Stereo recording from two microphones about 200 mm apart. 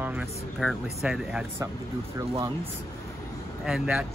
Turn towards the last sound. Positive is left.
turn(degrees=-5)  # may be behind; listen again after turning